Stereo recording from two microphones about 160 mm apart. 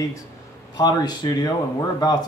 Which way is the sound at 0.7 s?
25° left (ahead or behind).